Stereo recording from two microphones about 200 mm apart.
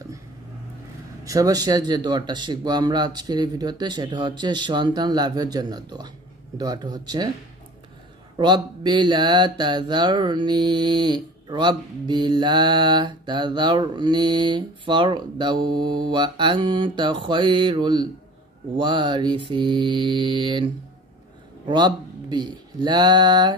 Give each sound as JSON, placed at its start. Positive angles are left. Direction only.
{"t": 1.2, "sound": "mantra", "side_deg": -15}
{"t": 8.4, "sound": "mantra", "side_deg": -20}
{"t": 21.6, "sound": "speech", "side_deg": -20}